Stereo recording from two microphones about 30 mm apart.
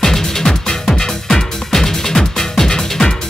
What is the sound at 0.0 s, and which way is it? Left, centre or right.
Music, centre.